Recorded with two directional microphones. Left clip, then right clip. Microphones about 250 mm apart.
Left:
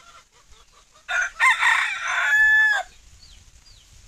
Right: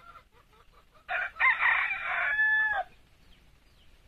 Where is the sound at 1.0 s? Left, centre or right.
Left.